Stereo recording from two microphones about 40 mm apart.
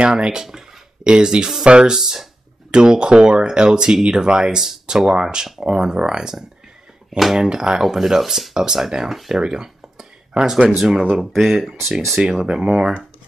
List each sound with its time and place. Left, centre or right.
0.0 s speech: right
2.0 s speech: centre
2.7 s speech: right
7.1 s speech: centre
7.4 s speech: right
7.8 s speech: centre
9.3 s a sound: centre
11.1 s speech: centre
12.4 s speech: centre